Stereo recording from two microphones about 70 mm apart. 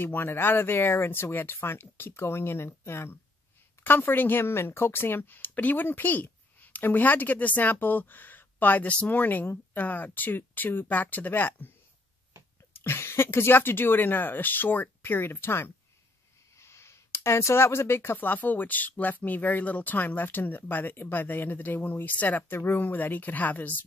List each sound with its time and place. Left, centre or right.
0.0 s a woman's voice: left
12.7 s a woman's voice: left